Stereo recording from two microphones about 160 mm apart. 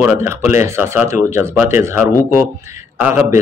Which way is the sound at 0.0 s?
15° right (ahead or behind).